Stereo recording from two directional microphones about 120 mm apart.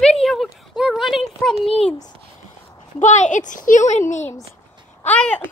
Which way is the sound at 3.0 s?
90° left.